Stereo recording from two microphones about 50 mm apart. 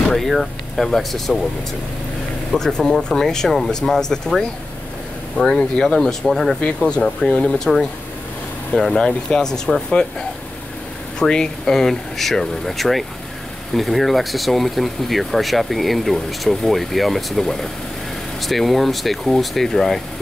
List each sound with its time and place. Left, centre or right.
0.1 s speech: centre
2.5 s speech: centre
6.6 s speech: centre
11.1 s speech: centre